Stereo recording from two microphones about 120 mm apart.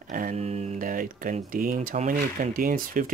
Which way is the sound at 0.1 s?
70° right (ahead or behind).